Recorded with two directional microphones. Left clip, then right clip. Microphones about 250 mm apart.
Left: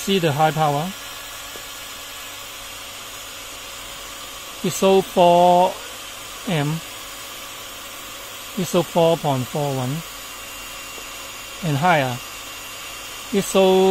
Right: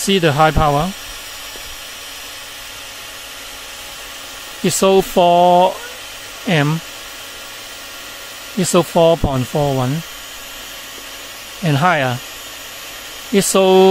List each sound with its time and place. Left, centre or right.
0.1 s speech: right
4.6 s speech: right
8.7 s speech: right
11.6 s speech: right
13.3 s speech: right